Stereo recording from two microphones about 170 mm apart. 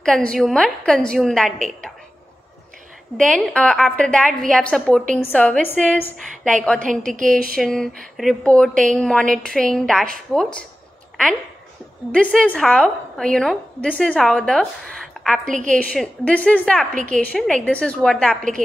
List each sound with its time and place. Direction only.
0.0 s a woman's voice: 5° left (ahead or behind)
3.2 s a woman's voice: 5° left (ahead or behind)
6.8 s a woman's voice: 50° right (ahead or behind)
7.5 s a woman's voice: 5° left (ahead or behind)
12.1 s a woman's voice: 5° left (ahead or behind)
15.4 s a woman's voice: 50° right (ahead or behind)
15.8 s a woman's voice: 5° left (ahead or behind)